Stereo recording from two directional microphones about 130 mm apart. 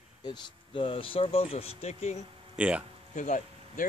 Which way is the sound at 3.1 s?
75° left (ahead or behind).